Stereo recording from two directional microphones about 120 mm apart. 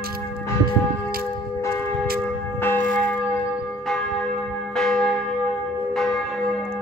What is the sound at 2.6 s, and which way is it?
Church bell, 15° left (ahead or behind).